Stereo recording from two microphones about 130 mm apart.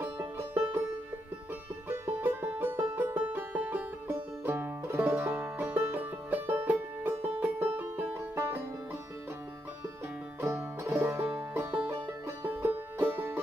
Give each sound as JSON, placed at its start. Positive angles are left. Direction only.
{"t": 0.0, "sound": "music", "side_deg": -20}
{"t": 1.9, "sound": "music", "side_deg": -15}
{"t": 10.4, "sound": "music", "side_deg": -20}